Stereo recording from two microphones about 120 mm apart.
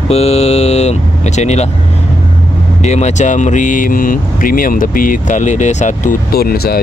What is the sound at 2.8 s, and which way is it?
Speech, 70° left (ahead or behind).